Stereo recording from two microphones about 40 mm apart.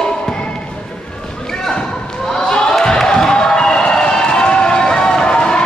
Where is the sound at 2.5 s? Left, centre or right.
Left.